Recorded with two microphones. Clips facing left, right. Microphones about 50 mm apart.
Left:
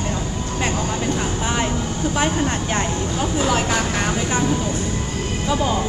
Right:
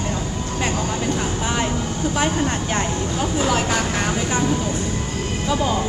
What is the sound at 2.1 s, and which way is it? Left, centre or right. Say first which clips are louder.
Speech: even; left.